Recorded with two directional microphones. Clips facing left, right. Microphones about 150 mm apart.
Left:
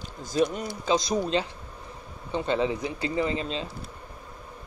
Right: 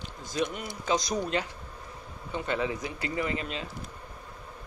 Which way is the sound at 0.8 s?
25° left (ahead or behind).